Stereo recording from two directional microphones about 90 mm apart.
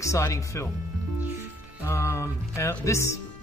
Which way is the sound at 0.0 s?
35° left (ahead or behind).